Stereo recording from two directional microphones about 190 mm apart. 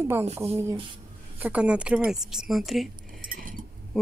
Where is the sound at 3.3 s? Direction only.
45° right (ahead or behind).